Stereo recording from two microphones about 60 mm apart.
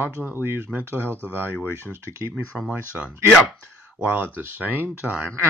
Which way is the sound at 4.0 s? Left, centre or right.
Right.